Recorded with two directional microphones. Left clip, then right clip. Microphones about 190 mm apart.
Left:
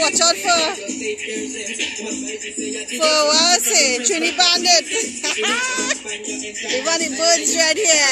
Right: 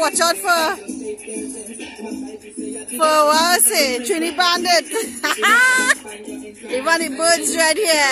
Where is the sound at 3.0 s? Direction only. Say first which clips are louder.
Right 2 dB; 20° right (ahead or behind).